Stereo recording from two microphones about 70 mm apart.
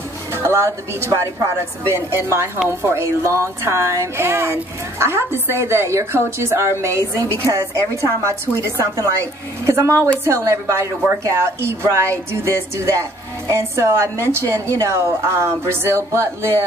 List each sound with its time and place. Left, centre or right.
0.3 s a woman's voice: right